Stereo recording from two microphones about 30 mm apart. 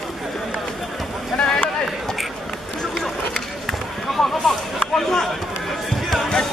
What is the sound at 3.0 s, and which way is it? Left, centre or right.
Run, centre.